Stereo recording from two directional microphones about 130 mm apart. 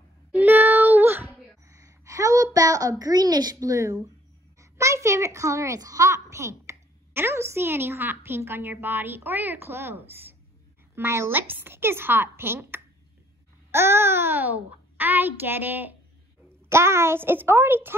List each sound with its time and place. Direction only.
0.3 s child singing: 15° right (ahead or behind)
4.6 s a child's voice: 20° right (ahead or behind)